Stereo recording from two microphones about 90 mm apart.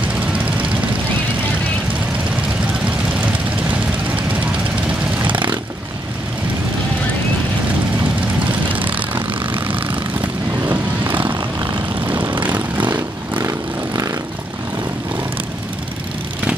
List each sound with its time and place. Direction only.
5.2 s vehicle: 65° right (ahead or behind)
8.7 s vehicle: 15° right (ahead or behind)
11.6 s vehicle: 20° right (ahead or behind)
13.4 s vehicle: 35° right (ahead or behind)